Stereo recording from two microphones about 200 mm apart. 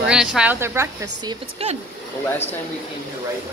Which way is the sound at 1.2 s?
30° right (ahead or behind).